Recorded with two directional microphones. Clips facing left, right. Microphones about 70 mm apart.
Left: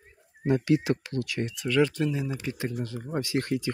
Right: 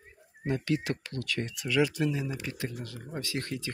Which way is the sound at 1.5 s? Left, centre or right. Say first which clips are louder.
Left 3 dB; centre.